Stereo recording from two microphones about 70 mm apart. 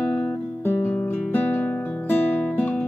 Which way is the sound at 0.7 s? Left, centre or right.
Left.